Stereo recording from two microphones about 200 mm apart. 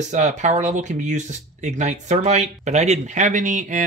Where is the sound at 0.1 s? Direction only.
35° right (ahead or behind).